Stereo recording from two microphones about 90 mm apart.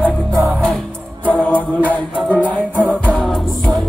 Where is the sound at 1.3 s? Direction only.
15° left (ahead or behind).